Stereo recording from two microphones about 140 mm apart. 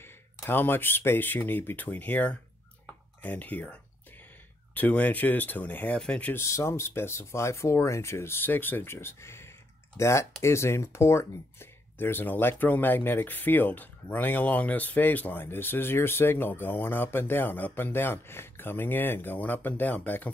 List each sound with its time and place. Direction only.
0.5 s speech: 15° left (ahead or behind)
4.7 s speech: 10° left (ahead or behind)